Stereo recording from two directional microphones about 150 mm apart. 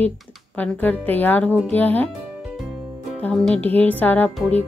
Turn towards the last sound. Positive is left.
turn(degrees=10)  # may be behind; listen again after turning